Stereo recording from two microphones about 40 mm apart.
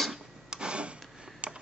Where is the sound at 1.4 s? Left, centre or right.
Right.